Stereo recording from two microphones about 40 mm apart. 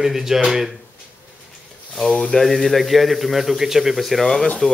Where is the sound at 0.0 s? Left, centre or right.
Centre.